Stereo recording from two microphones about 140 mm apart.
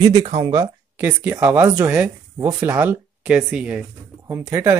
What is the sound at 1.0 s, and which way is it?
Speech, 15° right (ahead or behind).